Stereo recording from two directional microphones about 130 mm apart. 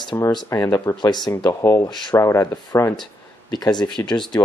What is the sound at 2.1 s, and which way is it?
Speech, 20° left (ahead or behind).